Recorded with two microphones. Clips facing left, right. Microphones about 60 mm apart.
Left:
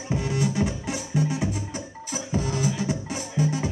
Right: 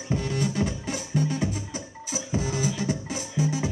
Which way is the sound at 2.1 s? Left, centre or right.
Centre.